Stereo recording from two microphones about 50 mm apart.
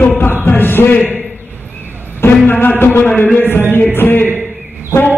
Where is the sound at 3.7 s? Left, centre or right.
Left.